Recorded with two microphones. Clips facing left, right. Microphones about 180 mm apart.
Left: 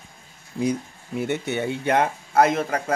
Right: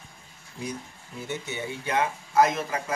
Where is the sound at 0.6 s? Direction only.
80° left; by 2.9 s 60° left (ahead or behind).